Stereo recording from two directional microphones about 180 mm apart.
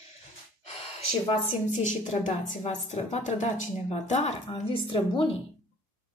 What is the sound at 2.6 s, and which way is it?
Speech, 40° left (ahead or behind).